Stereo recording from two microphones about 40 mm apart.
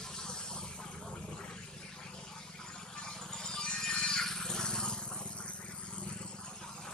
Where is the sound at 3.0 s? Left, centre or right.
Centre.